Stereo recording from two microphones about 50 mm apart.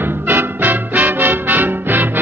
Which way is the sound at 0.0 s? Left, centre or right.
Right.